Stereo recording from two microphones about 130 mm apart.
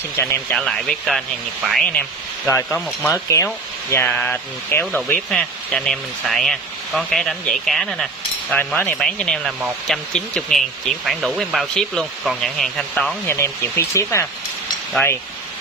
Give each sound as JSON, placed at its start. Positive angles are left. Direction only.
{"t": 0.2, "sound": "speech", "side_deg": 20}
{"t": 0.6, "sound": "speech", "side_deg": 5}
{"t": 13.3, "sound": "speech", "side_deg": 25}